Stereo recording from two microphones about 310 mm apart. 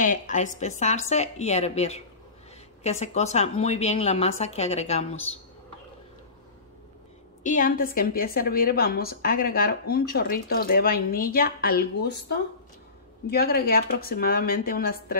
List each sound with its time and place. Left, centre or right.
0.0 s a woman's voice: left
7.4 s a woman's voice: left
13.3 s a woman's voice: left